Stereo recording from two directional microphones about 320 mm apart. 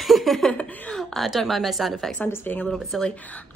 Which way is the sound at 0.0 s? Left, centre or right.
Centre.